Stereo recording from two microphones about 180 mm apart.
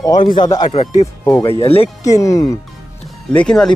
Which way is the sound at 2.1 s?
20° left (ahead or behind).